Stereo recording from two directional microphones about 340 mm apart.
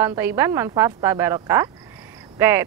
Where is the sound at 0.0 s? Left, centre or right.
Centre.